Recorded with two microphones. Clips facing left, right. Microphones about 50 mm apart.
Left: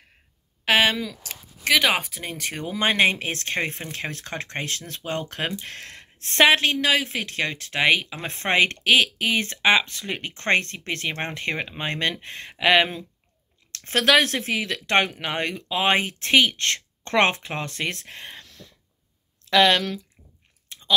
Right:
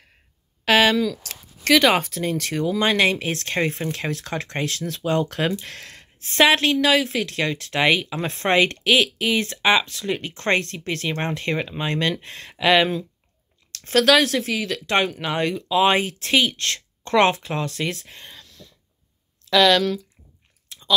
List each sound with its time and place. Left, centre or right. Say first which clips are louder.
0.7 s speech: right 3 dB; left
6.8 s speech: right 3 dB; centre; by 12.3 s left
12.3 s speech: even; left
18.1 s a sound: left 3 dB; left
19.5 s speech: right 2 dB; left
20.6 s chewing: even; left